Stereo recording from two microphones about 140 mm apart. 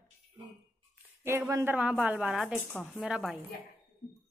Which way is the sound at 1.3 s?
20° right (ahead or behind).